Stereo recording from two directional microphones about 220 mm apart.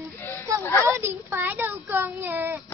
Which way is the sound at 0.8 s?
10° right (ahead or behind).